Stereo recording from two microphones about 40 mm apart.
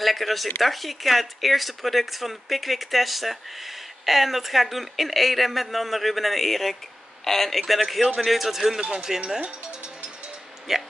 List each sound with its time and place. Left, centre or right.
0.0 s a sound: centre
0.6 s speech: centre
8.8 s speech: centre
10.7 s speech: centre